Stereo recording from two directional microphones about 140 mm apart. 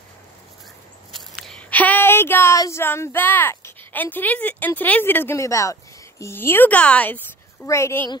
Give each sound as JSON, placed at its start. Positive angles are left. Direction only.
{"t": 1.4, "sound": "speech", "side_deg": 5}